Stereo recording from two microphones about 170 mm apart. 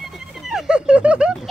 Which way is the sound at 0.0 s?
Centre (ahead or behind).